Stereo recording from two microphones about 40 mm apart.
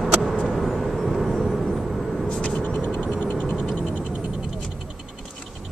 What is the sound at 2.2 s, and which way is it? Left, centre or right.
Vehicle, left.